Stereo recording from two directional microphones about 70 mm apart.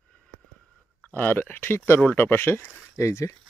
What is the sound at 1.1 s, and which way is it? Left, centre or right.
Speech, left.